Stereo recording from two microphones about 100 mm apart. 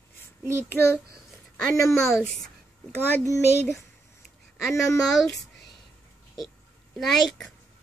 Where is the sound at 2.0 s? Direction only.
Centre (ahead or behind).